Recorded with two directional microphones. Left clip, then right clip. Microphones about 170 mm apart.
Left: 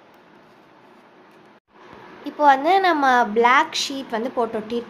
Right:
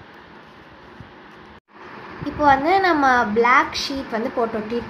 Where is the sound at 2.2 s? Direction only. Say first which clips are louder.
Even; 25° left (ahead or behind).